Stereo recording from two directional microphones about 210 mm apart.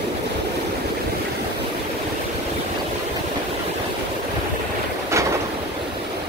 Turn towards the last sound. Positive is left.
turn(degrees=-15)  # may be behind; listen again after turning